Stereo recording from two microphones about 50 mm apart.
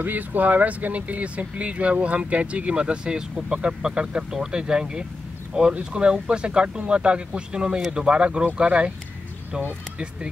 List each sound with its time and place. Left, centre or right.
0.0 s speech: right